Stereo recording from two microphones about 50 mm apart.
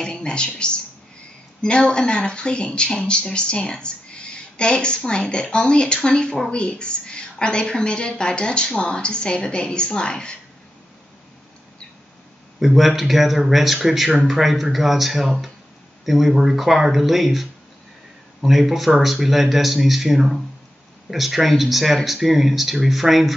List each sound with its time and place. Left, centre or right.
0.0 s speech: centre
12.5 s speech: centre